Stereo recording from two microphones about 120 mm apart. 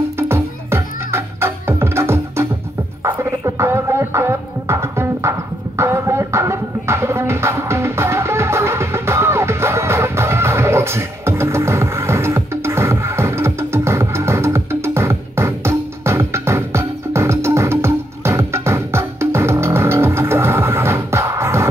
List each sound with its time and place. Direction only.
0.2 s music: 20° right (ahead or behind)